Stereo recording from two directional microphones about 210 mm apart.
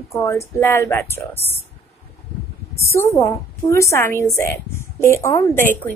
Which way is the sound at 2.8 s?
15° left (ahead or behind).